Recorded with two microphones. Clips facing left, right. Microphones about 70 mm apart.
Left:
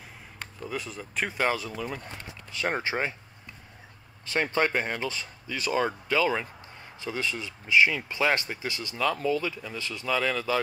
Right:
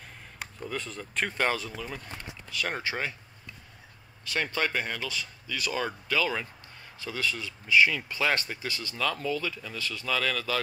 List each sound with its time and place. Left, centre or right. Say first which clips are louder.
0.7 s speech: left 1 dB; centre
2.5 s speech: left 3 dB; left
4.3 s speech: left 4 dB; left